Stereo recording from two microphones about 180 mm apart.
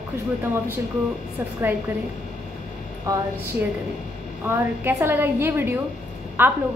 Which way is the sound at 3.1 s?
15° right (ahead or behind).